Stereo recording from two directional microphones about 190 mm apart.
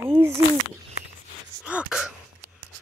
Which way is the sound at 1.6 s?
5° right (ahead or behind).